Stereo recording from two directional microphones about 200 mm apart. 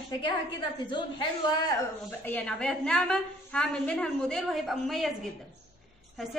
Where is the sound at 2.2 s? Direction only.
5° left (ahead or behind).